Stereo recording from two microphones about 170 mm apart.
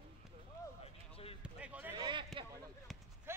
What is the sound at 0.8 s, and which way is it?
Basketball bounce, 35° left (ahead or behind).